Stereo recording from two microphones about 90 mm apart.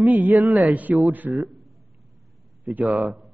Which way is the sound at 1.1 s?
20° right (ahead or behind).